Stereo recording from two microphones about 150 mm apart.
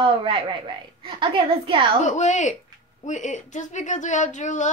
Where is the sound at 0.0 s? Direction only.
35° right (ahead or behind).